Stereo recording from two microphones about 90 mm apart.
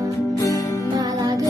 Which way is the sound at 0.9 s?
40° right (ahead or behind).